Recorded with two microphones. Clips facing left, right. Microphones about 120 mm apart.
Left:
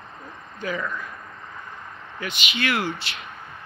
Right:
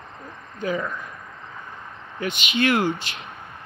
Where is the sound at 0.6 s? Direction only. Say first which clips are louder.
Right 3 dB; 30° right (ahead or behind).